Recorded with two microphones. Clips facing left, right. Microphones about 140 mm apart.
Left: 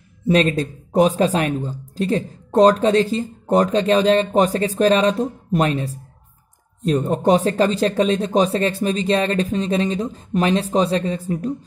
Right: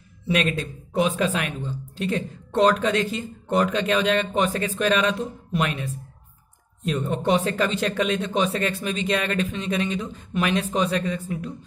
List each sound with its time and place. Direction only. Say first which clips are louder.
0.3 s speech: left 7 dB; 35° left (ahead or behind)